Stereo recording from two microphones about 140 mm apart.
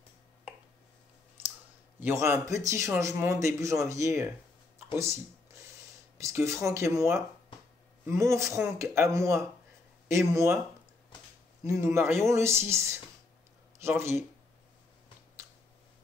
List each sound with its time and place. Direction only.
2.0 s a man's voice: 15° right (ahead or behind)
11.1 s a sound: 35° left (ahead or behind)
11.6 s a man's voice: 20° right (ahead or behind)
13.7 s a man's voice: 20° right (ahead or behind)